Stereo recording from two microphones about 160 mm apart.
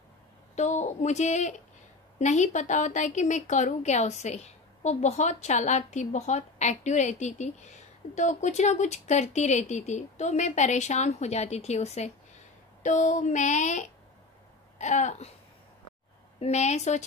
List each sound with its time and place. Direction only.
0.6 s a woman's voice: 50° left (ahead or behind)
16.3 s a woman's voice: 45° left (ahead or behind)